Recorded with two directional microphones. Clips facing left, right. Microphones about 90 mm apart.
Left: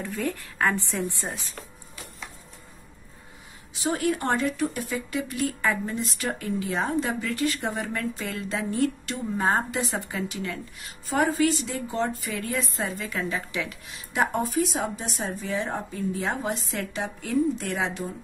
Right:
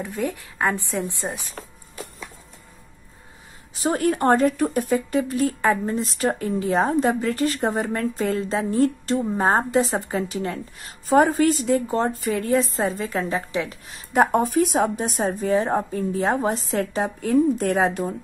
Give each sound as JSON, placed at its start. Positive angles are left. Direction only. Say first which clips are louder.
{"t": 0.2, "sound": "a woman's voice", "louder": "right 2 dB", "side_deg": -15}
{"t": 3.7, "sound": "speech", "louder": "right 4 dB", "side_deg": -40}